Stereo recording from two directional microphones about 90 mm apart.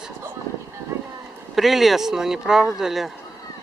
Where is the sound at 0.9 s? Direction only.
35° right (ahead or behind).